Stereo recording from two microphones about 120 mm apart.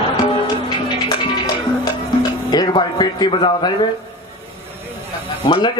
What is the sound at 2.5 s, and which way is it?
A man's voice, 35° left (ahead or behind).